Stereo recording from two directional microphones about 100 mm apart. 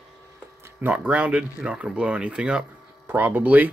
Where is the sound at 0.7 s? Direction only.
15° right (ahead or behind).